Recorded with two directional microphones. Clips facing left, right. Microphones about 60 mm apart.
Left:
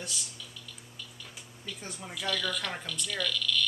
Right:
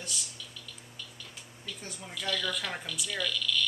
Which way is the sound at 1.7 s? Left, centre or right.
Centre.